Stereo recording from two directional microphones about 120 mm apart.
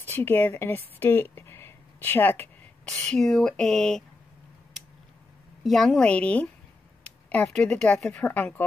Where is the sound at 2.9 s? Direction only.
5° left (ahead or behind).